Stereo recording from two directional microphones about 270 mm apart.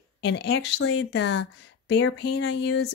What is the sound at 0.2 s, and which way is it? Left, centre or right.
A woman's voice, left.